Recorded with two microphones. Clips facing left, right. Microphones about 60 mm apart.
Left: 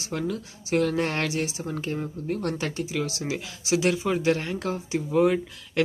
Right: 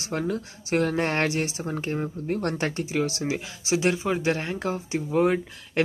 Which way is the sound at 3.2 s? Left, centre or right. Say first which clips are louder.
Right 2 dB; right.